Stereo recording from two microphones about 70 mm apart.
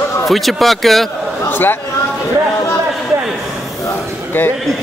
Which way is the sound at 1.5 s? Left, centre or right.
Left.